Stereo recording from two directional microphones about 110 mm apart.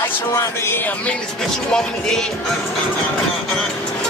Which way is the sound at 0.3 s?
25° left (ahead or behind).